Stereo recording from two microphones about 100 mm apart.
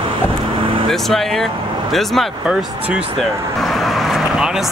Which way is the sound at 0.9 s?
5° left (ahead or behind).